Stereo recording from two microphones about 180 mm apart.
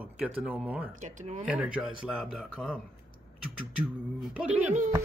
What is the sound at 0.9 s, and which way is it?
Speech, 40° right (ahead or behind).